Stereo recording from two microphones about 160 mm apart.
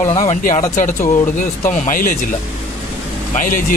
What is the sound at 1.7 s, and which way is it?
Speech, 50° left (ahead or behind).